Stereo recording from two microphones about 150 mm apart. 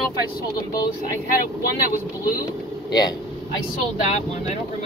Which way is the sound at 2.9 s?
25° left (ahead or behind).